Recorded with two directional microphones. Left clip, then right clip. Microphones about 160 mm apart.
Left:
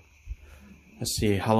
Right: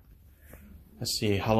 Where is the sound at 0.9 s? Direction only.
20° left (ahead or behind).